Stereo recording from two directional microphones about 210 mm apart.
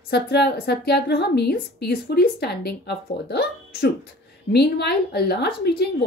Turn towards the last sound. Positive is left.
turn(degrees=50)  # may be behind; listen again after turning